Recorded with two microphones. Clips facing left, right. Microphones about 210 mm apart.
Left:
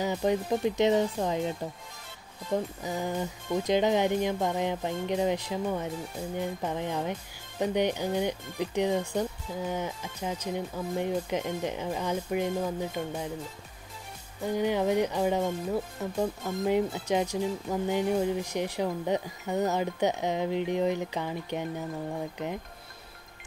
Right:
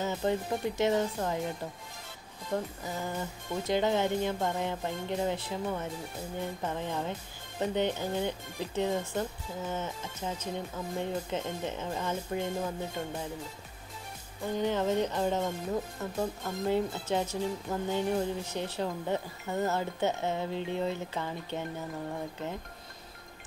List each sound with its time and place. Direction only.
0.0 s speech: 10° left (ahead or behind)
2.5 s speech: 15° left (ahead or behind)
14.4 s speech: 10° left (ahead or behind)